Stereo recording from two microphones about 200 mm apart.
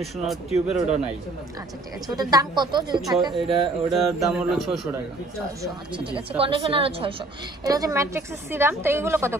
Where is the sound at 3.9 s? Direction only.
Centre (ahead or behind).